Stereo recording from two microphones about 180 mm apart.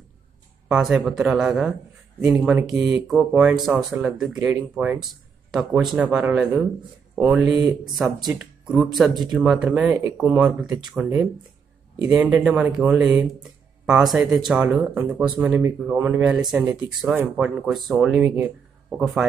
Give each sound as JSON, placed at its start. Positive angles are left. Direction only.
{"t": 0.7, "sound": "speech", "side_deg": -5}
{"t": 7.4, "sound": "speech", "side_deg": -20}
{"t": 7.8, "sound": "speech", "side_deg": 0}
{"t": 12.1, "sound": "speech", "side_deg": -5}